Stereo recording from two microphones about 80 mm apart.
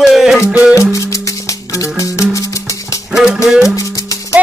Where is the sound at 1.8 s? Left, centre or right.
Left.